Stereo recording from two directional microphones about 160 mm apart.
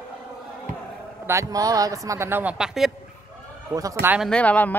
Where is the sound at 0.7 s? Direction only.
55° right (ahead or behind).